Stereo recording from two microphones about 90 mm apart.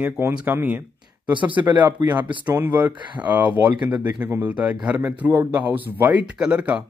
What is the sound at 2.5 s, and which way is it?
Speech, 20° right (ahead or behind).